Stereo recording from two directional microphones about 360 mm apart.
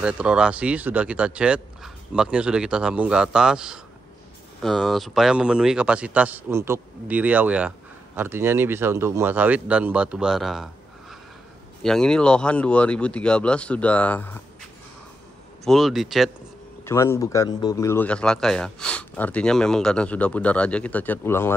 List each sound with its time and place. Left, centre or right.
0.0 s speech: centre
15.6 s speech: centre